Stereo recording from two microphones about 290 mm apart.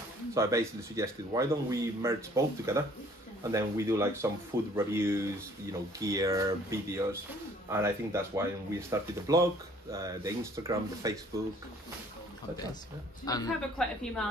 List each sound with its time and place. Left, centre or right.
0.3 s speech: centre
13.2 s speech: centre
13.6 s a woman's voice: centre